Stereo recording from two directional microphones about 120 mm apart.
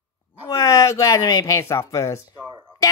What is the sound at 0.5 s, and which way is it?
Speech, 25° left (ahead or behind).